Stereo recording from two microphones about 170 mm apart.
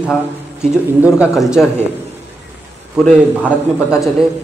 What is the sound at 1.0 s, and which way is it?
Speech, 5° right (ahead or behind).